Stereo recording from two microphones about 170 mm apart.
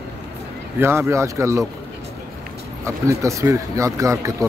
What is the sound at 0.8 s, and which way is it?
Speech, 15° right (ahead or behind).